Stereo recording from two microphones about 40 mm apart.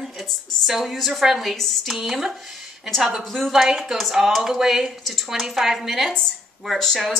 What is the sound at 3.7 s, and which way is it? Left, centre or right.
A woman's voice, centre.